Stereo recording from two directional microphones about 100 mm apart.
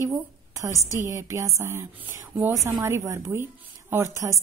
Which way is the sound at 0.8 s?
30° right (ahead or behind).